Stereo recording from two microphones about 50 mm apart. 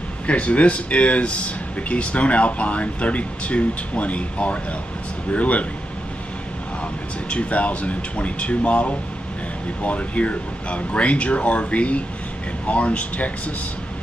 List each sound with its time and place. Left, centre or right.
0.3 s speech: left
6.8 s speech: left